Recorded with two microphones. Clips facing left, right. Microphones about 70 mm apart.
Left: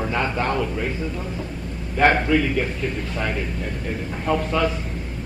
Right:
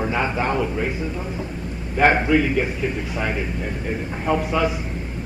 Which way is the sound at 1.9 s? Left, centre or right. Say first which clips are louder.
Right 1 dB; centre.